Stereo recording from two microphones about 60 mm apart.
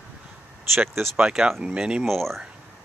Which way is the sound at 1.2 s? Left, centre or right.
Centre.